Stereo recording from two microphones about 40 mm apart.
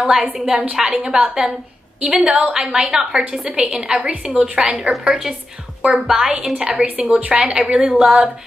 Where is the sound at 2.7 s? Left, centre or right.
Centre.